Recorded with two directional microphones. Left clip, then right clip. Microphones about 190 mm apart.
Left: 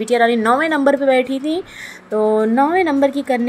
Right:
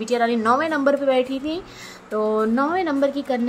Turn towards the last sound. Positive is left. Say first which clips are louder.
# left 5 dB
turn(degrees=25)  # may be behind; listen again after turning